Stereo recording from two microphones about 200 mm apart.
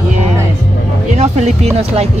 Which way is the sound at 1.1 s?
35° right (ahead or behind).